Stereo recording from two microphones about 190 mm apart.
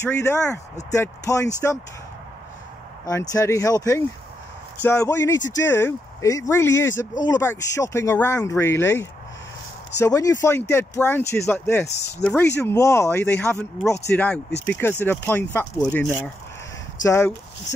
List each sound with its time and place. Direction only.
0.0 s speech: 15° left (ahead or behind)
3.1 s speech: 15° left (ahead or behind)